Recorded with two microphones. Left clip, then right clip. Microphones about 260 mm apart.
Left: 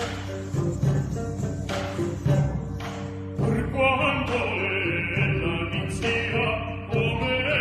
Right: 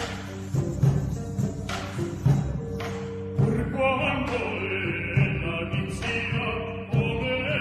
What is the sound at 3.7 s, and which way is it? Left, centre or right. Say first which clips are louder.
Music: left 3 dB; left.